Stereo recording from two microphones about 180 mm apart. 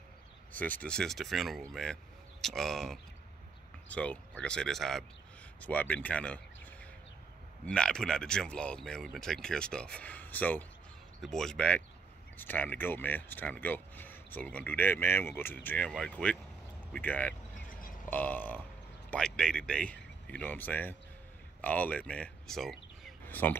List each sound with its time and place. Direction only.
0.5 s speech: 10° left (ahead or behind)
17.6 s a sound: 50° left (ahead or behind)
18.1 s speech: 10° left (ahead or behind)